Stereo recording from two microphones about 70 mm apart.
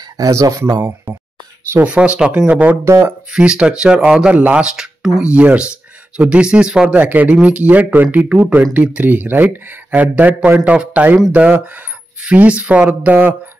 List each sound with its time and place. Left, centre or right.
0.2 s speech: right
1.8 s speech: centre
2.8 s speech: right
3.3 s speech: centre